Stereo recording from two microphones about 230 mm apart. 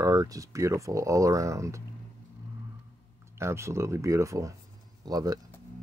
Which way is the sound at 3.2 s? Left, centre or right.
Centre.